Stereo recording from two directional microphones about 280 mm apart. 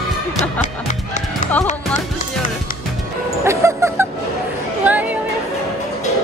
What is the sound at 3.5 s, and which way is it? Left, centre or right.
Music, centre.